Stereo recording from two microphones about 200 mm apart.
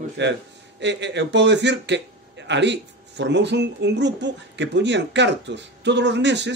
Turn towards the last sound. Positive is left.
turn(degrees=-60)  # may be behind; listen again after turning